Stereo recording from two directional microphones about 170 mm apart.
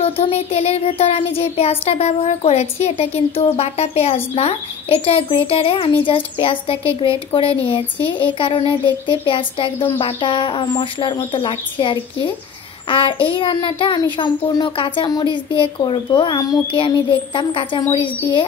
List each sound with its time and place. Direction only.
0.0 s child singing: 35° left (ahead or behind)
7.6 s a child's voice: 35° left (ahead or behind)
11.3 s child singing: 30° left (ahead or behind)
12.9 s a child's voice: 30° left (ahead or behind)